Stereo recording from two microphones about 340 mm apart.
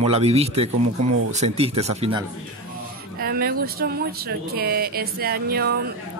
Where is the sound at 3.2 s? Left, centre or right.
Right.